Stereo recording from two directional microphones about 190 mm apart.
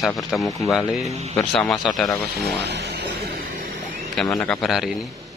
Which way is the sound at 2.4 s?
60° right (ahead or behind).